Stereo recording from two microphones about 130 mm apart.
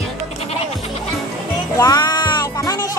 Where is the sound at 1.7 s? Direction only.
30° left (ahead or behind).